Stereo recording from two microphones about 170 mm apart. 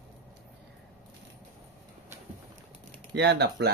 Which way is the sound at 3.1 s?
90° right.